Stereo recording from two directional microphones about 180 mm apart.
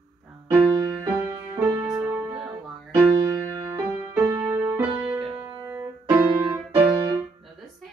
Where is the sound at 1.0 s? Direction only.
15° right (ahead or behind).